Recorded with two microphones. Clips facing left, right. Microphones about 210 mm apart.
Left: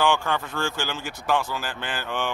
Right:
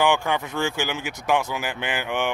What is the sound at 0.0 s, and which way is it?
Speech, 15° right (ahead or behind).